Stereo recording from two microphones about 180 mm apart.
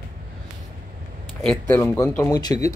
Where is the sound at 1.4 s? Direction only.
5° left (ahead or behind).